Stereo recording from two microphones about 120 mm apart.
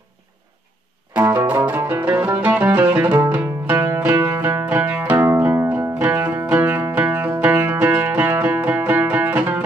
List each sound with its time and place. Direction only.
1.2 s music: 20° right (ahead or behind)